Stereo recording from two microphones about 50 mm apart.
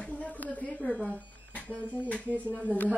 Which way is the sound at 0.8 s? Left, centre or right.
Left.